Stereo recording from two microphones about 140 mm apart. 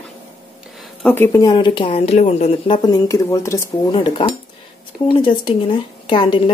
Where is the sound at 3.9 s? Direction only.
35° left (ahead or behind).